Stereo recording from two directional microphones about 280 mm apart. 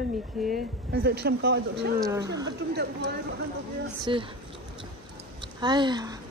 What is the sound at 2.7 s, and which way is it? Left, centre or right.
Speech, right.